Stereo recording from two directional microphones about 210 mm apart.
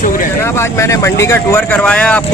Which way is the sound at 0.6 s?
15° left (ahead or behind).